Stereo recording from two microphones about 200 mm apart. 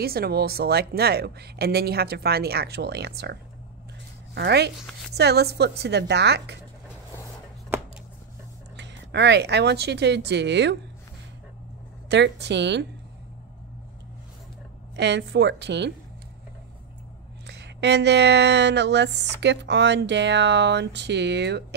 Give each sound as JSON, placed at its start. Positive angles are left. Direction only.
{"t": 0.0, "sound": "speech", "side_deg": -50}
{"t": 4.4, "sound": "speech", "side_deg": -55}
{"t": 8.7, "sound": "speech", "side_deg": -60}
{"t": 12.1, "sound": "speech", "side_deg": -60}
{"t": 15.0, "sound": "speech", "side_deg": -60}
{"t": 17.5, "sound": "speech", "side_deg": -60}